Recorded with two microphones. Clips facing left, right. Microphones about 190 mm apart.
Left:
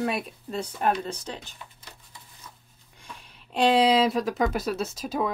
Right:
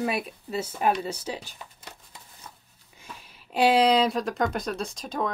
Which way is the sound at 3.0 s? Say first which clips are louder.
Right 1 dB; 5° right (ahead or behind).